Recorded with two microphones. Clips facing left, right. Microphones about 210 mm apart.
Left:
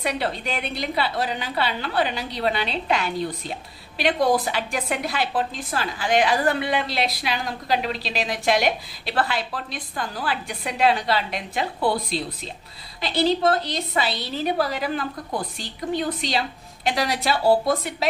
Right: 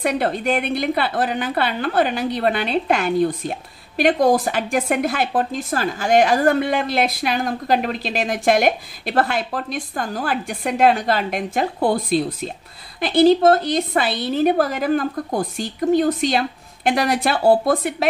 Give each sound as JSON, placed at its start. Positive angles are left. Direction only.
{"t": 0.0, "sound": "a woman's voice", "side_deg": -50}